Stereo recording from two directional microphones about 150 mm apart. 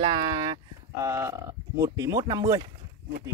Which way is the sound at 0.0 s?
35° right (ahead or behind).